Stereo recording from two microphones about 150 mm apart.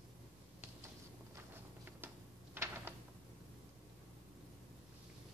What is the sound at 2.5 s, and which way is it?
Typewriter, 15° right (ahead or behind).